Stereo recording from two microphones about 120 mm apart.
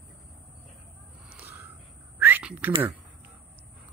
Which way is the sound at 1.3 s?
20° right (ahead or behind).